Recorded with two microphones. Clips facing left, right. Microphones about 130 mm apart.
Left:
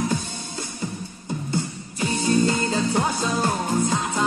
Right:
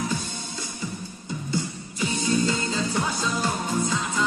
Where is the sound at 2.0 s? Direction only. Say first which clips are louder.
Left 3 dB; 45° left (ahead or behind).